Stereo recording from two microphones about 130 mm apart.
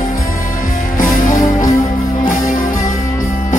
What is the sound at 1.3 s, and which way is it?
Music, 25° left (ahead or behind).